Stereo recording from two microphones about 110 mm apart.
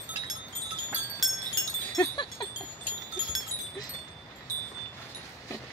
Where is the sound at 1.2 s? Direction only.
Centre (ahead or behind).